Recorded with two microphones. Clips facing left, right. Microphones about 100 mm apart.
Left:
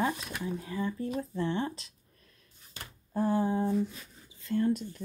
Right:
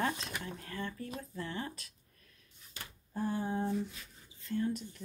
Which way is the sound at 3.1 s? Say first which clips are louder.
Left 7 dB; 90° left.